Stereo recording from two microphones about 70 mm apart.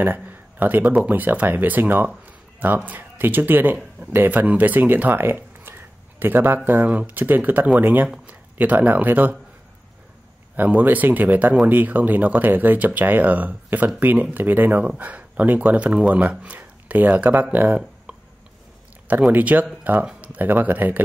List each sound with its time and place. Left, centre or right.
0.0 s speech: right
10.5 s speech: right
19.3 s speech: right